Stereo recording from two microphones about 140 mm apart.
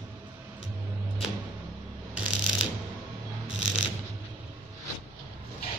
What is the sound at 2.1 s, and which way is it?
Mechanisms, 5° right (ahead or behind).